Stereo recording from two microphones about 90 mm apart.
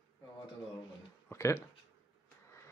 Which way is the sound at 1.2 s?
30° left (ahead or behind).